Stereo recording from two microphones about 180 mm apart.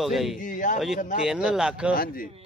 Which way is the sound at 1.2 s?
5° right (ahead or behind).